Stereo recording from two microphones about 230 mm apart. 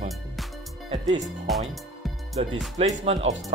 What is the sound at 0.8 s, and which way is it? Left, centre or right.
Speech, right.